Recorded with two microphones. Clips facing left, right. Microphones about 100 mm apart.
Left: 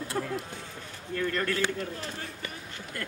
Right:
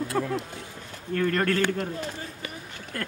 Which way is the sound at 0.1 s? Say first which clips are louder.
Right 4 dB; 70° right (ahead or behind).